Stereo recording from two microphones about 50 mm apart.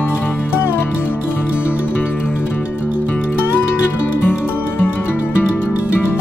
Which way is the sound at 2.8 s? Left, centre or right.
Right.